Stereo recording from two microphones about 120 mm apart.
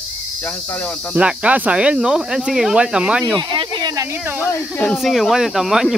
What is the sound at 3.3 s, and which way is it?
Speech, 40° right (ahead or behind).